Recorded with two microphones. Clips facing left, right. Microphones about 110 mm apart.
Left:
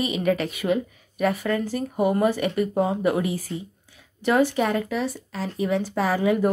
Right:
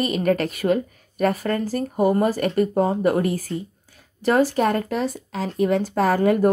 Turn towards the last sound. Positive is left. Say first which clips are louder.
# right 3 dB
turn(degrees=-50)  # may be behind; listen again after turning